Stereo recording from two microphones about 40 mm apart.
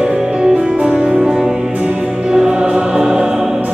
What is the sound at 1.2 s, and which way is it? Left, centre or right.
Music, centre.